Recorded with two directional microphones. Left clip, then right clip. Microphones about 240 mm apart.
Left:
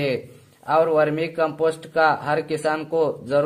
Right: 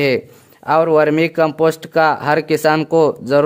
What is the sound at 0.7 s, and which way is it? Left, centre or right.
Speech, right.